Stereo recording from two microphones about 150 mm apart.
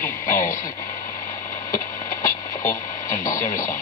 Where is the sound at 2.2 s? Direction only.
20° left (ahead or behind).